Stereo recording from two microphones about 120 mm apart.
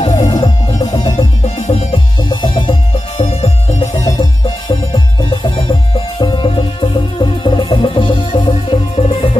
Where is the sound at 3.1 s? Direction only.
65° left (ahead or behind).